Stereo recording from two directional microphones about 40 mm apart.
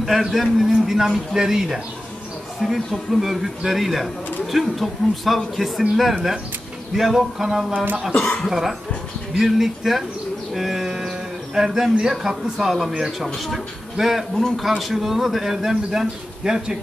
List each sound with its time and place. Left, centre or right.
0.0 s a man's voice: centre
8.2 s speech: left
8.5 s a man's voice: centre